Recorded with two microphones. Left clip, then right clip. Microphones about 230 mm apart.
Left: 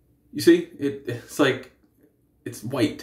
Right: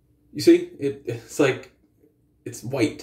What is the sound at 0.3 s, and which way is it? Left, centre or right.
Speech, left.